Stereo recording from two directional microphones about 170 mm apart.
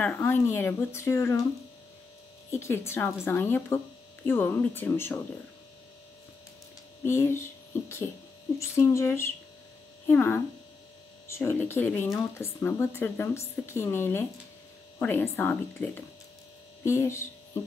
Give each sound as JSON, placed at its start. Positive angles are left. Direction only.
{"t": 0.0, "sound": "speech", "side_deg": 15}
{"t": 2.5, "sound": "speech", "side_deg": 15}
{"t": 7.1, "sound": "speech", "side_deg": 15}
{"t": 8.5, "sound": "speech", "side_deg": 15}